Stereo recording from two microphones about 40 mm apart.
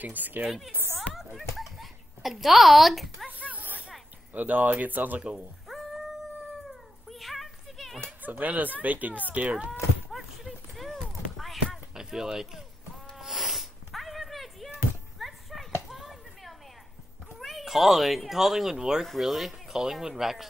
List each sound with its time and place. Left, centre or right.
0.0 s speech: right
0.9 s a child's voice: centre
3.5 s a sound: right
4.3 s speech: right
5.7 s dog: centre
6.7 s cat: centre
8.2 s speech: right
10.1 s a sound: centre
11.9 s speech: centre
13.2 s a sound: centre
17.4 s speech: centre
19.0 s speech: centre